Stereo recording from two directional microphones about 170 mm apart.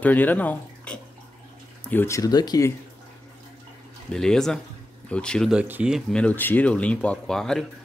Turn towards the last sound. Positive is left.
turn(degrees=5)  # may be behind; listen again after turning